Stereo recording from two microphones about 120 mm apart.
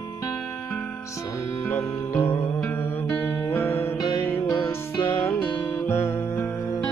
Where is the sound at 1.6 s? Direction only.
20° left (ahead or behind).